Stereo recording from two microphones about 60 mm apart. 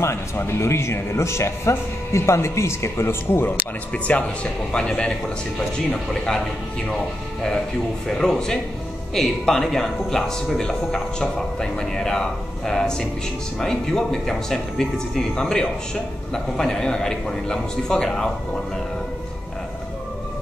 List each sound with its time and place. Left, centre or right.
0.0 s speech: left
4.1 s a man's voice: left
8.1 s speech: centre
16.5 s speech: centre